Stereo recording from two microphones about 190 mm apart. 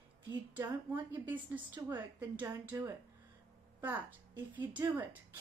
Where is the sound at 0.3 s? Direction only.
10° right (ahead or behind).